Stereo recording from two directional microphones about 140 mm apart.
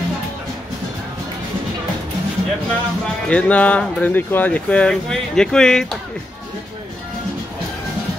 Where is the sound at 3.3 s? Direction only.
10° left (ahead or behind).